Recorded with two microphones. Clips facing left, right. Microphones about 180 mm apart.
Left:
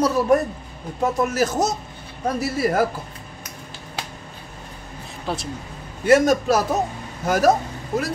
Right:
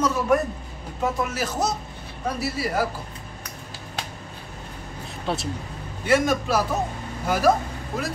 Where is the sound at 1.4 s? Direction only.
45° left (ahead or behind).